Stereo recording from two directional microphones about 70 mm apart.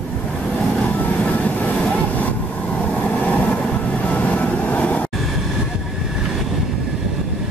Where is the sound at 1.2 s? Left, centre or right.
Centre.